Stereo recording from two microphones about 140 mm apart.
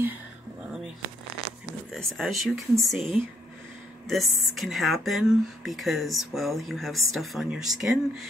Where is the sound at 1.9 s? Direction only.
Centre (ahead or behind).